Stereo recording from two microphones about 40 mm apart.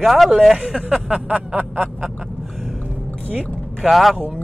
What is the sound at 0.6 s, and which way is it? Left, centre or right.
Speech, right.